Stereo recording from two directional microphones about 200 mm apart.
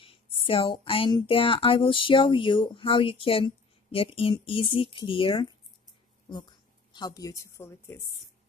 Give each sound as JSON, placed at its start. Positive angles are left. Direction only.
{"t": 0.0, "sound": "speech", "side_deg": 25}
{"t": 6.9, "sound": "speech", "side_deg": 20}